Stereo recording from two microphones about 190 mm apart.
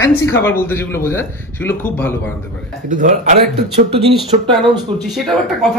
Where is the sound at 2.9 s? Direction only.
40° right (ahead or behind).